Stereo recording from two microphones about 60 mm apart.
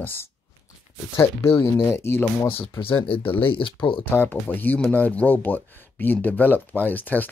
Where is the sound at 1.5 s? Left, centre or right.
Left.